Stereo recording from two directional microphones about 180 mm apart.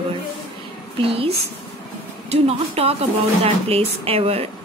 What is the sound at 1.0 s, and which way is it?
Speech, 30° right (ahead or behind).